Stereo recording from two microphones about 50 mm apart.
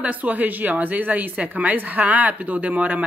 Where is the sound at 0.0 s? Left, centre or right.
Right.